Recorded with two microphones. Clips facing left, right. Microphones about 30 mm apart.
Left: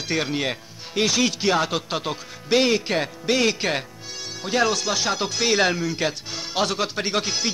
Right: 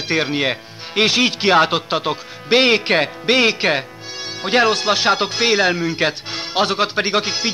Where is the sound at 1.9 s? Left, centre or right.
Right.